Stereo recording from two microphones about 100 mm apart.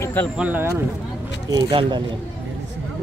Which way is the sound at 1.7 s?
60° right (ahead or behind).